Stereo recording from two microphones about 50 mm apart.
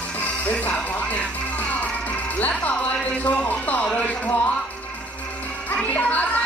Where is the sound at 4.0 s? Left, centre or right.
Left.